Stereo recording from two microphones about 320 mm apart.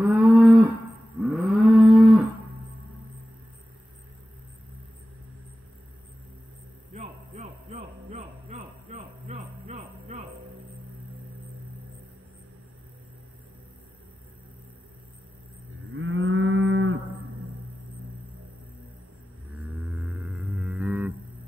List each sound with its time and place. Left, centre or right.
0.0 s cattle: centre
6.9 s a sound: right
8.1 s music: right
15.9 s moo: right
19.8 s music: centre